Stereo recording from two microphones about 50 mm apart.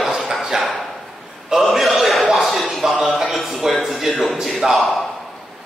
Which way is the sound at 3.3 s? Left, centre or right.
Centre.